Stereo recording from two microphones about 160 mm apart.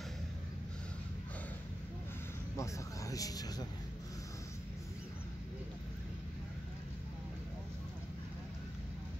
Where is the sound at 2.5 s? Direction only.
20° left (ahead or behind).